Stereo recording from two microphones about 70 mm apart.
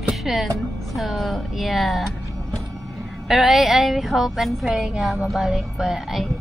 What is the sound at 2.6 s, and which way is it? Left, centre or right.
Vehicle, right.